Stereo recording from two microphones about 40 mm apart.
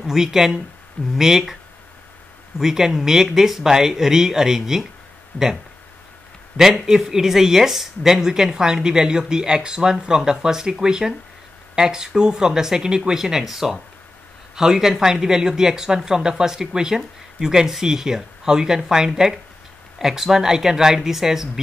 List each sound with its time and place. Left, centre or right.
0.0 s speech: centre
2.6 s speech: centre
5.3 s speech: left
6.5 s speech: centre